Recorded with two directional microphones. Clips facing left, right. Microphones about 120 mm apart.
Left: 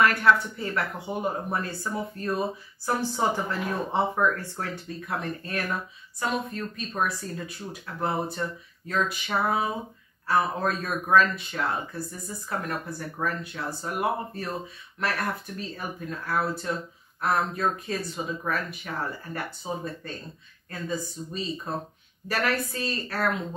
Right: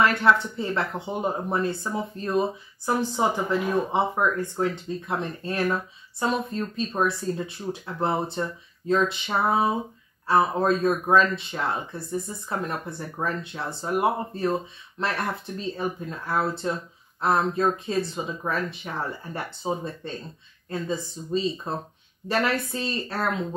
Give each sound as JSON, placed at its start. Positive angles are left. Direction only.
{"t": 0.0, "sound": "speech", "side_deg": -25}